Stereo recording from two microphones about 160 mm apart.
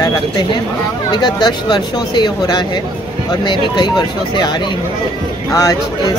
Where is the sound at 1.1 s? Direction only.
25° left (ahead or behind).